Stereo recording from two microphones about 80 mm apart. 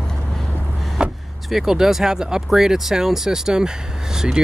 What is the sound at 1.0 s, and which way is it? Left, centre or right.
Vehicle, centre.